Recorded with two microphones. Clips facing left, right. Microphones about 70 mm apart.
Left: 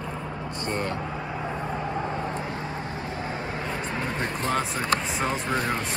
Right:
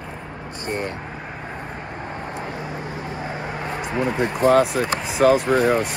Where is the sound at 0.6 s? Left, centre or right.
Centre.